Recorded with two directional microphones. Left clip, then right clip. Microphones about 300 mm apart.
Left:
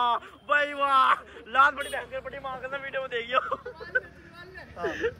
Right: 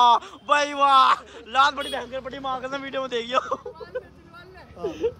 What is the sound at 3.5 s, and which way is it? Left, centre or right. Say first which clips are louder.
Speech: even; centre.